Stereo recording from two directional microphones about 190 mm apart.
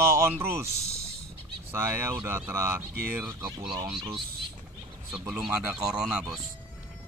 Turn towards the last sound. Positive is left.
turn(degrees=-5)  # may be behind; listen again after turning